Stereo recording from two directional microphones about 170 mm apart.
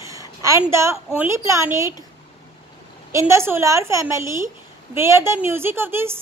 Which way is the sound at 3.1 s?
15° right (ahead or behind).